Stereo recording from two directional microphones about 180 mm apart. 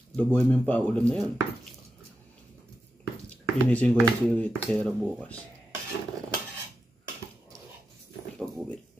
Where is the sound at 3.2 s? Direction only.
10° left (ahead or behind).